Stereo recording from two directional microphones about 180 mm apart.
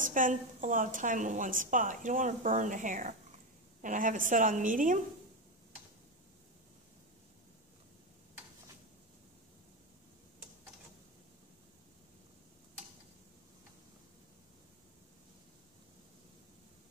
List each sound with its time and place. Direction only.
0.0 s a woman's voice: 45° right (ahead or behind)